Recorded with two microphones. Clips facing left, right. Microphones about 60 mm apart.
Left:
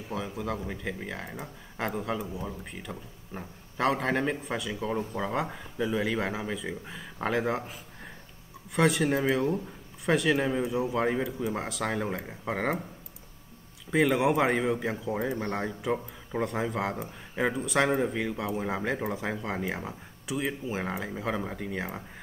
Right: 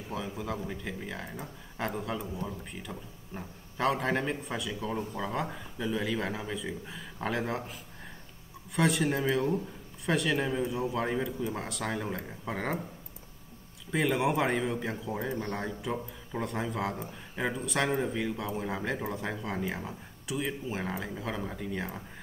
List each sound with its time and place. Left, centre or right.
0.1 s a man's voice: centre
8.7 s a man's voice: centre
13.9 s a man's voice: centre
15.1 s speech: centre
15.4 s speech: centre
15.9 s a man's voice: centre